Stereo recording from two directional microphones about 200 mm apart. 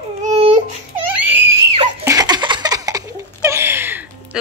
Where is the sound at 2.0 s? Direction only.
20° right (ahead or behind).